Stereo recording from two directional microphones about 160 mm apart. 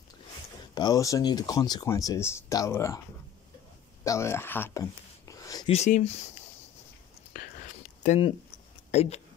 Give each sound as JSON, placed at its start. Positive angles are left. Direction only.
{"t": 0.7, "sound": "speech", "side_deg": 25}
{"t": 4.0, "sound": "a sound", "side_deg": 20}
{"t": 5.7, "sound": "speech", "side_deg": 45}
{"t": 8.0, "sound": "speech", "side_deg": 45}